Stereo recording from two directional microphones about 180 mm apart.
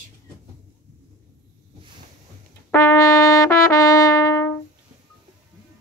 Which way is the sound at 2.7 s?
15° left (ahead or behind).